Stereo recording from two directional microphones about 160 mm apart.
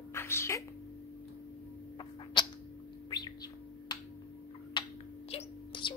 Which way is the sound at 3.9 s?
25° left (ahead or behind).